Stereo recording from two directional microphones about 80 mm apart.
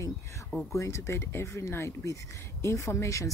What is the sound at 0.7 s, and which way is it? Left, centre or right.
Speech, left.